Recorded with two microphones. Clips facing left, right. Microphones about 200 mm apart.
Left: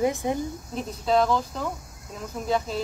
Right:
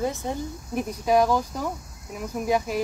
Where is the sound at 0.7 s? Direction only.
10° right (ahead or behind).